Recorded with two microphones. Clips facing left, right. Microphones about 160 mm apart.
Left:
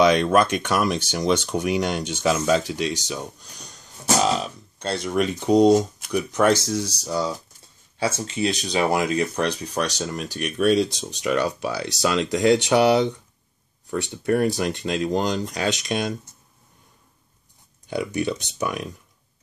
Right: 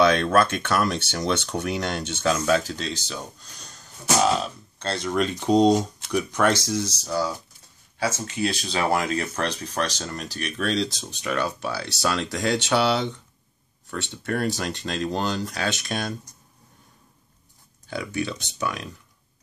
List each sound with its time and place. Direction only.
0.0 s speech: 15° left (ahead or behind)
7.0 s speech: 20° left (ahead or behind)
14.1 s speech: 15° left (ahead or behind)
17.8 s speech: 15° left (ahead or behind)